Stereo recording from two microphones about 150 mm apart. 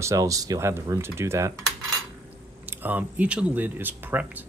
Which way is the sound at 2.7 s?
10° right (ahead or behind).